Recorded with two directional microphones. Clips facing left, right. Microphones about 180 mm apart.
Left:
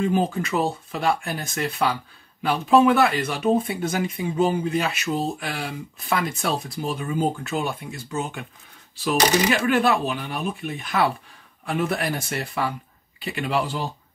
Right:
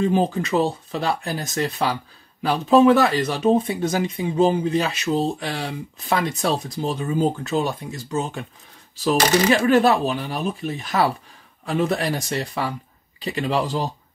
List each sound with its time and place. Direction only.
0.0 s speech: 35° right (ahead or behind)
9.5 s speech: 40° right (ahead or behind)